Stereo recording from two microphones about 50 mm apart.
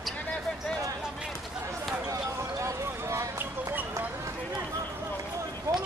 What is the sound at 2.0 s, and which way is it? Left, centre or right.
Basketball bounce, right.